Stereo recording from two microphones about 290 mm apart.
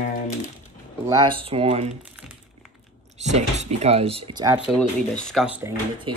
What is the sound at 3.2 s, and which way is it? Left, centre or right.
Speech, right.